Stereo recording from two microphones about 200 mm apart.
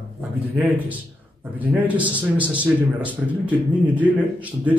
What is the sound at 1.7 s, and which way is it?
A man's voice, 5° right (ahead or behind).